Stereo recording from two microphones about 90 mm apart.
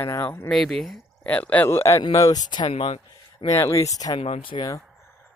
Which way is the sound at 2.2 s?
45° left (ahead or behind).